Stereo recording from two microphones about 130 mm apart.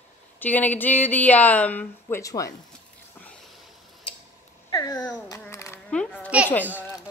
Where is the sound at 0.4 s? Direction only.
15° left (ahead or behind).